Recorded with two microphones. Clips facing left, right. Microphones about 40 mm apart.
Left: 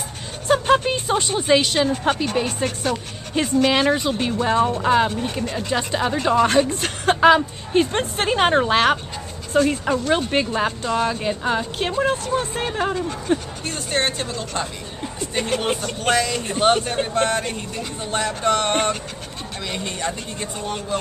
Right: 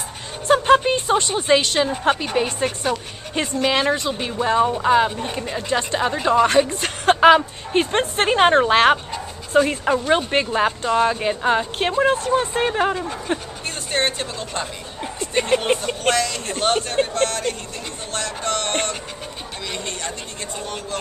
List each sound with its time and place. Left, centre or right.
0.5 s speech: centre
7.2 s speech: centre
13.7 s speech: centre
15.1 s a sound: centre
15.6 s speech: centre
16.0 s speech: centre
17.1 s speech: centre